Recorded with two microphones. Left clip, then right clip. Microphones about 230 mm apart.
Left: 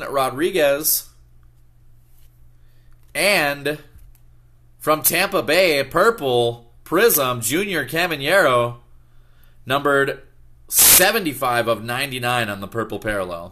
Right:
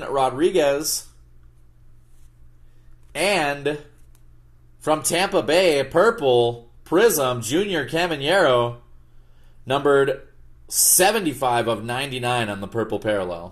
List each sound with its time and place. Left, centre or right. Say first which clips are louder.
0.0 s speech: even; left
3.1 s speech: left 3 dB; left